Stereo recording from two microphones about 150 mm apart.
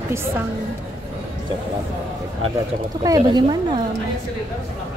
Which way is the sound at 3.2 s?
35° right (ahead or behind).